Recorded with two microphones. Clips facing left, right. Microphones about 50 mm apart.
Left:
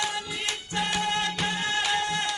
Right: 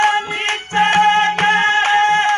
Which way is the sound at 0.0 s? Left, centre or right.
Right.